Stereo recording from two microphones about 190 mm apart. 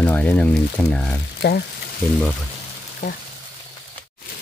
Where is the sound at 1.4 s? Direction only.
60° left (ahead or behind).